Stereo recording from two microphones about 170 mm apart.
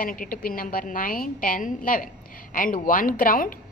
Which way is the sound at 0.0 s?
55° left (ahead or behind).